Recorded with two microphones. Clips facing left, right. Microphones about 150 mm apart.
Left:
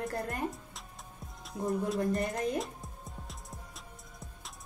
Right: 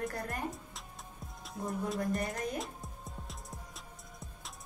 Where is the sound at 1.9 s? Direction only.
Centre (ahead or behind).